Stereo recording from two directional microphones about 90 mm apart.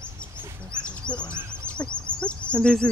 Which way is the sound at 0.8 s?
10° left (ahead or behind).